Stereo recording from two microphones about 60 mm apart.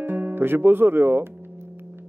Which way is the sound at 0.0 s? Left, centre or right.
Right.